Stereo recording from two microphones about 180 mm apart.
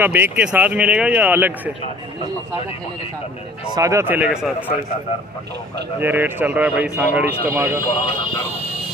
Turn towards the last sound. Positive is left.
turn(degrees=-15)  # may be behind; listen again after turning